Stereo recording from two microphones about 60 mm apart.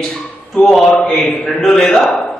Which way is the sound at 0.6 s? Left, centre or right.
Centre.